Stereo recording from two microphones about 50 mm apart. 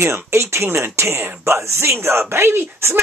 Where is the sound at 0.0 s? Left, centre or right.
Right.